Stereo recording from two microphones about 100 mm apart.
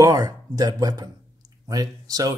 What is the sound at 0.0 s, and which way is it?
Speech, 40° right (ahead or behind).